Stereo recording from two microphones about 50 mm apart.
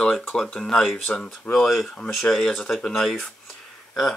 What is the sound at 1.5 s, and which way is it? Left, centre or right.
Speech, centre.